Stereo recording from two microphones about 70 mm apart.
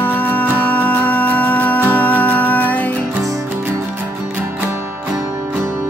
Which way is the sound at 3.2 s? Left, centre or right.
Right.